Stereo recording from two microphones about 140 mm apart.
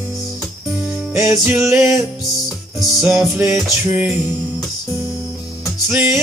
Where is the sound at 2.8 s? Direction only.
5° right (ahead or behind).